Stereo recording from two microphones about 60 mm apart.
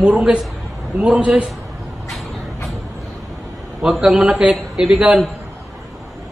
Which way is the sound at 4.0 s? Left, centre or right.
Centre.